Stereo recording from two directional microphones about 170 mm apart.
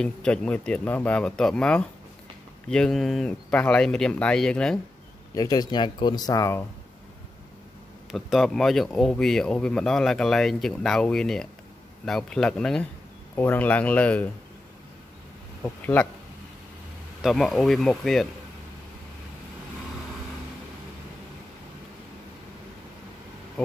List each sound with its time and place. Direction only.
0.0 s speech: 5° left (ahead or behind)
5.3 s speech: 20° left (ahead or behind)
8.1 s speech: centre (ahead or behind)
15.6 s speech: 10° left (ahead or behind)
17.2 s speech: centre (ahead or behind)